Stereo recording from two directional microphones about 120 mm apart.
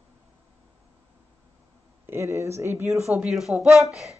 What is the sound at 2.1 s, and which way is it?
Speech, 25° right (ahead or behind).